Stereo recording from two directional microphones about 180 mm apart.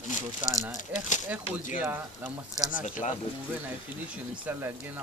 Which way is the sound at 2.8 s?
45° left (ahead or behind).